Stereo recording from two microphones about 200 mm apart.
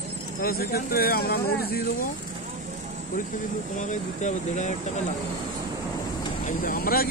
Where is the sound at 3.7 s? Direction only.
35° left (ahead or behind).